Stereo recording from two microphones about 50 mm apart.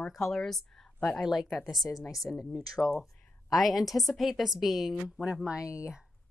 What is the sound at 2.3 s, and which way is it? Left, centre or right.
Speech, left.